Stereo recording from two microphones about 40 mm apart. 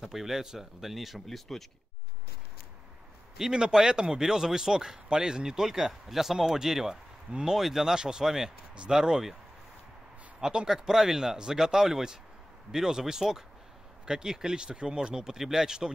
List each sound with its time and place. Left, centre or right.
0.0 s a man's voice: centre
3.3 s a man's voice: centre
10.4 s speech: right
10.7 s a man's voice: centre